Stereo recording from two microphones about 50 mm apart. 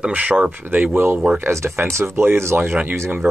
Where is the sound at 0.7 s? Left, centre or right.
Right.